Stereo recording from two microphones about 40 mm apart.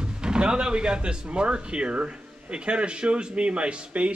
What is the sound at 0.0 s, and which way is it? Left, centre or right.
Speech, right.